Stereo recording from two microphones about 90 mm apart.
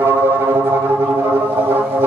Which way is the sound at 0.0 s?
25° right (ahead or behind).